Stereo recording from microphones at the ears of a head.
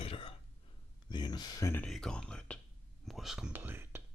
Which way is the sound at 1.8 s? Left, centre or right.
Centre.